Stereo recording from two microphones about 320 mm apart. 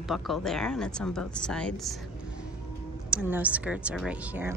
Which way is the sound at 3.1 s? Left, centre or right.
Centre.